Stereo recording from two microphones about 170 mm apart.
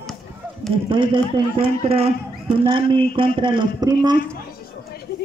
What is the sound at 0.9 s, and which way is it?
Speech, 30° right (ahead or behind).